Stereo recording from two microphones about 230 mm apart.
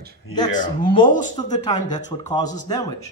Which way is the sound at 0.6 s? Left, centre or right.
Left.